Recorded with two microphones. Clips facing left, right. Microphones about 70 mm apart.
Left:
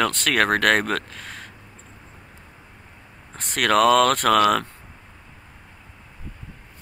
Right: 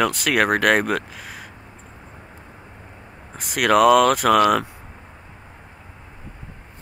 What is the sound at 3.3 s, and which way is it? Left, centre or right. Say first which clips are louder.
Speech: right 3 dB; centre.